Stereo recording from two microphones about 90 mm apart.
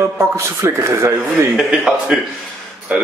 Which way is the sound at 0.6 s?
30° right (ahead or behind).